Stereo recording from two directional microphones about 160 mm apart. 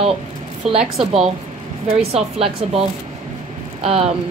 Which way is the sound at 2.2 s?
40° right (ahead or behind).